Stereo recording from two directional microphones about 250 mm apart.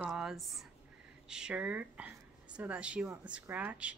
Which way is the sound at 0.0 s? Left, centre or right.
Centre.